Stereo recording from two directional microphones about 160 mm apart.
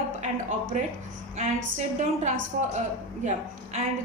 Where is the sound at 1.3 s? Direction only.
50° right (ahead or behind).